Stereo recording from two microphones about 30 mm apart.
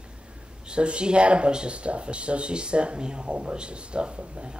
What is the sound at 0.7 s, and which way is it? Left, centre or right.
Speech, right.